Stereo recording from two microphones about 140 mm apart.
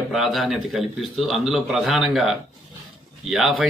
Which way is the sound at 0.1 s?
Centre (ahead or behind).